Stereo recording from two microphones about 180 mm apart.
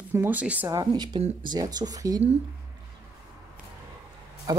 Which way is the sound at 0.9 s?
25° right (ahead or behind).